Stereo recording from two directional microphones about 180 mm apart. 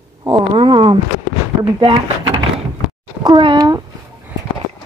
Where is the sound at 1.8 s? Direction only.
30° right (ahead or behind).